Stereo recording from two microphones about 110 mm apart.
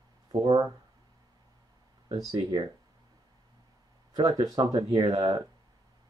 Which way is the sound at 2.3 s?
50° right (ahead or behind).